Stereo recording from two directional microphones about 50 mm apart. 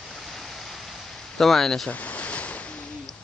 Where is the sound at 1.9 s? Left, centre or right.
Left.